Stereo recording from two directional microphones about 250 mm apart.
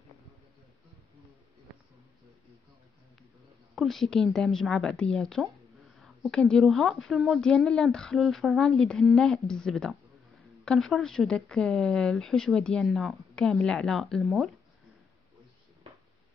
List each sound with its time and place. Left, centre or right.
3.7 s a woman's voice: centre